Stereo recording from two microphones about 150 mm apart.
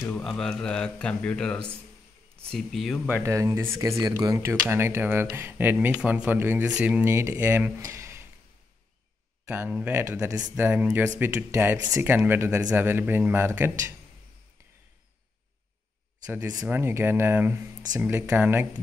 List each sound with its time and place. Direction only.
0.0 s speech: 5° left (ahead or behind)
3.1 s speech: 15° right (ahead or behind)
9.5 s speech: 10° right (ahead or behind)
16.5 s speech: 10° right (ahead or behind)